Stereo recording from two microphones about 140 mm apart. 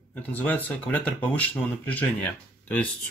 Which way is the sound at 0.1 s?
10° left (ahead or behind).